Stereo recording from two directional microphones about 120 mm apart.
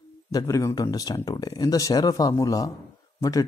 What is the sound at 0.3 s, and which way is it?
Speech, 30° left (ahead or behind).